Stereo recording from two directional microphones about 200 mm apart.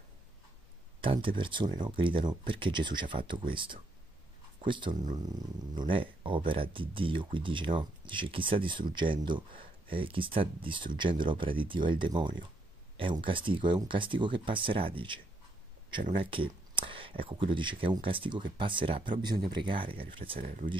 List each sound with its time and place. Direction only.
1.0 s speech: 25° right (ahead or behind)
16.2 s speech: 25° right (ahead or behind)
20.3 s speech: 45° right (ahead or behind)